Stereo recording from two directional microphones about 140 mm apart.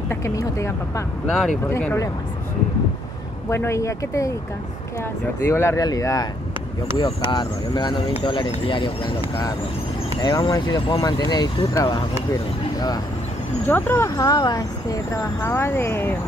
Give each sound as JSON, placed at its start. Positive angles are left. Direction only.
{"t": 0.1, "sound": "speech", "side_deg": 20}
{"t": 3.4, "sound": "speech", "side_deg": 20}
{"t": 5.5, "sound": "speech", "side_deg": 20}
{"t": 10.2, "sound": "speech", "side_deg": 30}
{"t": 13.7, "sound": "speech", "side_deg": 15}